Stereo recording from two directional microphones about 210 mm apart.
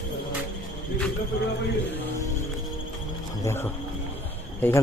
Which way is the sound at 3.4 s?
10° left (ahead or behind).